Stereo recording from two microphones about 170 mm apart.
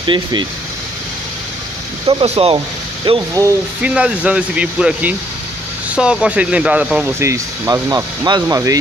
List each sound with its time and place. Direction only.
0.0 s speech: 25° right (ahead or behind)
2.0 s speech: 35° right (ahead or behind)
3.8 s speech: 5° right (ahead or behind)
7.2 s speech: 15° right (ahead or behind)